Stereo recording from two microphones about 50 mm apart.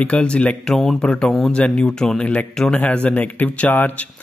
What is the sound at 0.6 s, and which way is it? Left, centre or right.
Speech, centre.